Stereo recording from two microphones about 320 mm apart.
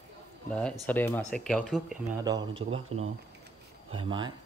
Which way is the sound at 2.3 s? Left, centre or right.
Centre.